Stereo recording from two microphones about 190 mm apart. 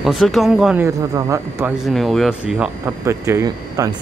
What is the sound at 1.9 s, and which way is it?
Speech, centre (ahead or behind).